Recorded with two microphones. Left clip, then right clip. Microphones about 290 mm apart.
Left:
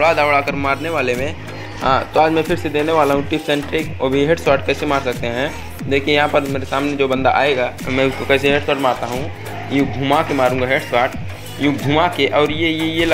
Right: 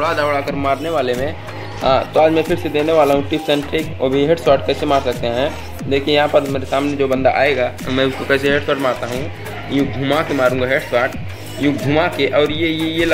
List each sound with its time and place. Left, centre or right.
0.0 s speech: centre